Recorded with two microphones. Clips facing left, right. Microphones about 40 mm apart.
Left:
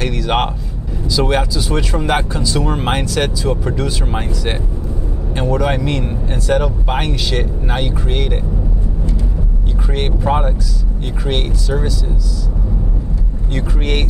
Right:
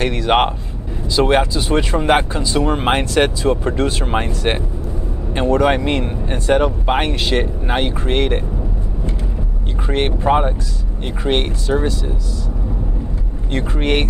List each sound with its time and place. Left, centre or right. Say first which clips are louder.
0.0 s speech: right 2 dB; right
9.8 s speech: right 2 dB; right
13.5 s speech: right 3 dB; right